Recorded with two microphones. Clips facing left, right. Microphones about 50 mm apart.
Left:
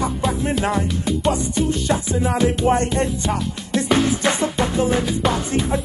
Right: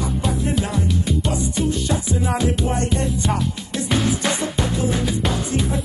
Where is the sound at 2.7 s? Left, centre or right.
Left.